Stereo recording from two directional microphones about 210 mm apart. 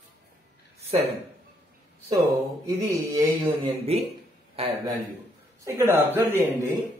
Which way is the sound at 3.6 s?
30° right (ahead or behind).